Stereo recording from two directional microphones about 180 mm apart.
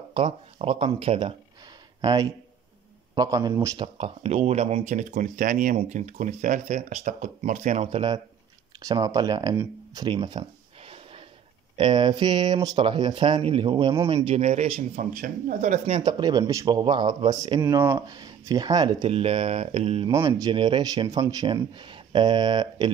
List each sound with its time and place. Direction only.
0.1 s speech: 30° right (ahead or behind)
16.0 s speech: 20° right (ahead or behind)
20.1 s speech: 20° right (ahead or behind)